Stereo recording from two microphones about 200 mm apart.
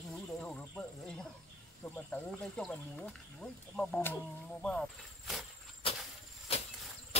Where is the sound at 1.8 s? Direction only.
5° left (ahead or behind).